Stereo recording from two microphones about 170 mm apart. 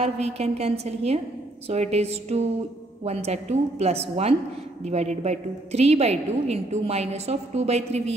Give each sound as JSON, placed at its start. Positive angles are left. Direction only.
{"t": 0.0, "sound": "a woman's voice", "side_deg": -35}